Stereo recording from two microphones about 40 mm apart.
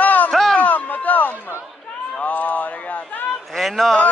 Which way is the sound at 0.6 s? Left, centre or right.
Left.